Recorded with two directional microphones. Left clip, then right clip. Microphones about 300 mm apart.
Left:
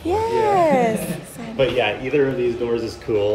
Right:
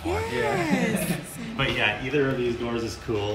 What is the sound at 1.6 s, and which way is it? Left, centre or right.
Speech, left.